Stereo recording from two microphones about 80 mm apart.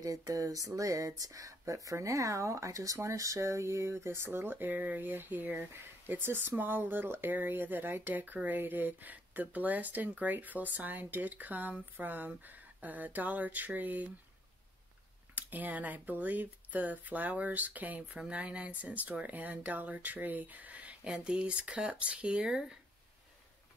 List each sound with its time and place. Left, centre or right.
0.0 s speech: right
15.3 s speech: right